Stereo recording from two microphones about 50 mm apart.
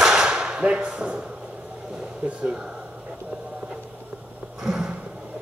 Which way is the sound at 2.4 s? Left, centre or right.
Right.